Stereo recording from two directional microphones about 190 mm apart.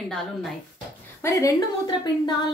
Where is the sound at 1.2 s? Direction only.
15° left (ahead or behind).